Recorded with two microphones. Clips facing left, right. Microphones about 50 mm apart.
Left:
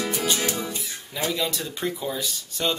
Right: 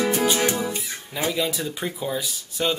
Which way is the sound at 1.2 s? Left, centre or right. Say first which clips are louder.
Right 2 dB; centre.